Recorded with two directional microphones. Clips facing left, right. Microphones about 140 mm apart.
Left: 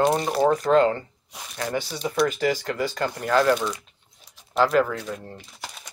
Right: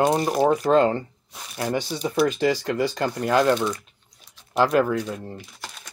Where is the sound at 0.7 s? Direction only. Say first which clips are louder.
Even; 25° right (ahead or behind).